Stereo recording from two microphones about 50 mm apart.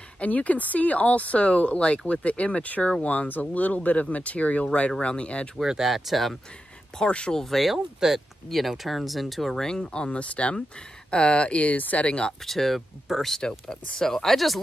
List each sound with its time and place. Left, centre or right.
0.2 s speech: left
5.6 s speech: centre
7.1 s speech: left
7.3 s speech: centre
9.7 s speech: centre
12.4 s speech: centre
13.4 s speech: centre